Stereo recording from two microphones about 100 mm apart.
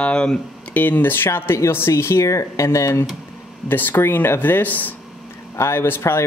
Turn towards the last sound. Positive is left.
turn(degrees=25)  # may be behind; listen again after turning